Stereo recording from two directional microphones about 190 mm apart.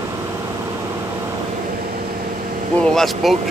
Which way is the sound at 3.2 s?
Centre (ahead or behind).